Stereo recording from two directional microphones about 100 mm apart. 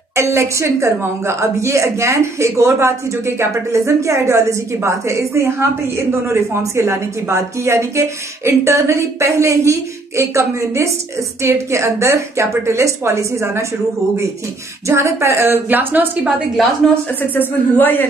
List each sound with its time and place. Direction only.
0.1 s a woman's voice: 30° right (ahead or behind)
14.9 s a woman's voice: 30° right (ahead or behind)
17.2 s a woman's voice: 20° left (ahead or behind)